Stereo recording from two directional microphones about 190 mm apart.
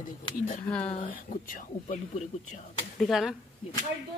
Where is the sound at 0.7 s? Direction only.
5° left (ahead or behind).